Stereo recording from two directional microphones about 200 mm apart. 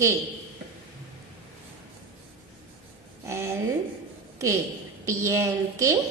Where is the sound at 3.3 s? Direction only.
15° right (ahead or behind).